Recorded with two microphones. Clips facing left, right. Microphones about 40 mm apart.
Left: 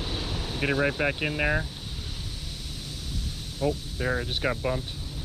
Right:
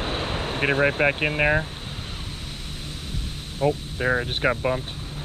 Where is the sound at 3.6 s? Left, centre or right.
Right.